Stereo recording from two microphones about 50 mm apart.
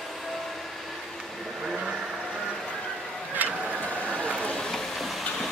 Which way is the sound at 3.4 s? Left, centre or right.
Right.